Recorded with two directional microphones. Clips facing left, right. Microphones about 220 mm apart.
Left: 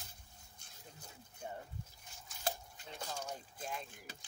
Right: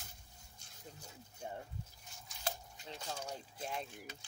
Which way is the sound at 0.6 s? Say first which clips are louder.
Even; 55° left (ahead or behind).